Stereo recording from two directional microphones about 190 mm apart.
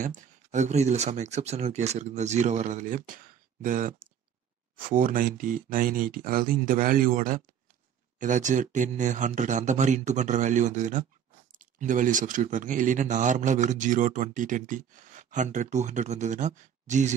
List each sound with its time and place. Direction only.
0.0 s speech: 40° right (ahead or behind)